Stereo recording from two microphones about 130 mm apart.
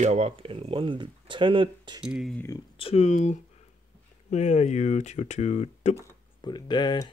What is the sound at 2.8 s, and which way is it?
Speech, 55° left (ahead or behind).